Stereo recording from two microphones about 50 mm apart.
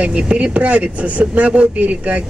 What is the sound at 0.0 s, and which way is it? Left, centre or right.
Speech, right.